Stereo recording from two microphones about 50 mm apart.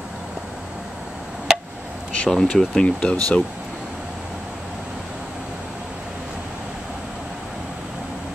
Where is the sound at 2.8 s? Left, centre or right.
Left.